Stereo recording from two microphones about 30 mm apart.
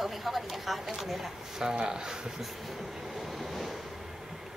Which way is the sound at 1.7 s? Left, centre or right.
Right.